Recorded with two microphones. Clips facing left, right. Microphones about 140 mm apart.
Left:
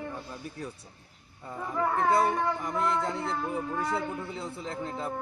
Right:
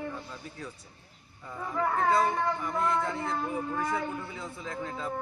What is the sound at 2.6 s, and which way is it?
A man's voice, 35° left (ahead or behind).